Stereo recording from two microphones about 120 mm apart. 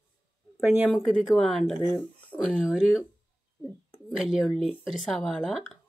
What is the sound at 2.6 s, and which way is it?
Speech, 5° right (ahead or behind).